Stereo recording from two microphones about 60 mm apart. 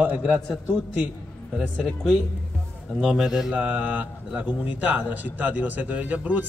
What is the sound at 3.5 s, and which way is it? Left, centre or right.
A man's voice, right.